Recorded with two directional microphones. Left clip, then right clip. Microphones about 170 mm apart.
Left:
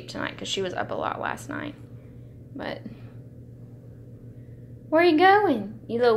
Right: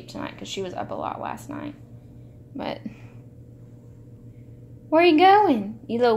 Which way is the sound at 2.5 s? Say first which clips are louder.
Right 2 dB; 35° right (ahead or behind).